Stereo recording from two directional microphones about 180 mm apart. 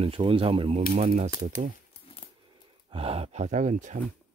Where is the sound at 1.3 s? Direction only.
20° right (ahead or behind).